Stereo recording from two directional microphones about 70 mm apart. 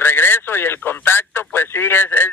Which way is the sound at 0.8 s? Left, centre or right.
Left.